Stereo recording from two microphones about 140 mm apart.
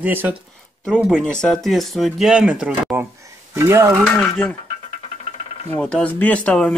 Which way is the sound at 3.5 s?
20° right (ahead or behind).